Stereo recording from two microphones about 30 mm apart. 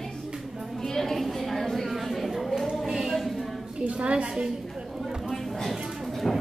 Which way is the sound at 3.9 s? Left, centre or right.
Right.